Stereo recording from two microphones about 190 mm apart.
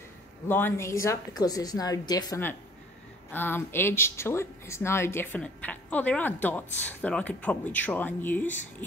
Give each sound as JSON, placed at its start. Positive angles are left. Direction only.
{"t": 0.5, "sound": "speech", "side_deg": 10}